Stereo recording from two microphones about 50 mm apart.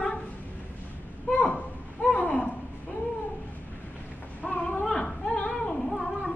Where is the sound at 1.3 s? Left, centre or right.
Left.